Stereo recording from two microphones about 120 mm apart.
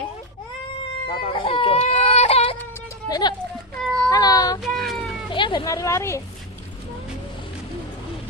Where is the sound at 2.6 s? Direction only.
20° left (ahead or behind).